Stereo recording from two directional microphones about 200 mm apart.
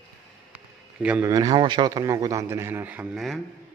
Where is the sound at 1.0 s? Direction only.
5° right (ahead or behind).